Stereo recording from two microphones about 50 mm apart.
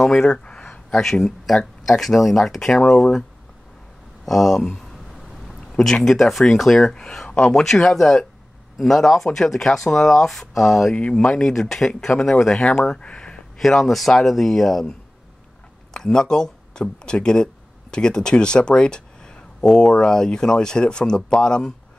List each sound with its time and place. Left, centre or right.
0.0 s a sound: centre
1.2 s speech: centre
4.3 s speech: centre
5.7 s speech: centre
7.6 s speech: centre
13.6 s speech: centre
15.9 s speech: centre